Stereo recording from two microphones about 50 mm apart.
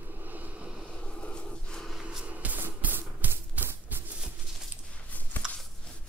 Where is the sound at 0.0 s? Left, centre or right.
Right.